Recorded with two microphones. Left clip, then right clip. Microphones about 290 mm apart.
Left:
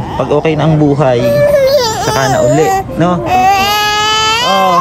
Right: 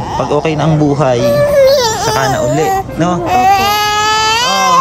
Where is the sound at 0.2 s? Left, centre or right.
Centre.